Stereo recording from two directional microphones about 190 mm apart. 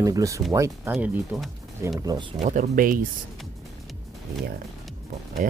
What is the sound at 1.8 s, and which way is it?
Speech, 15° right (ahead or behind).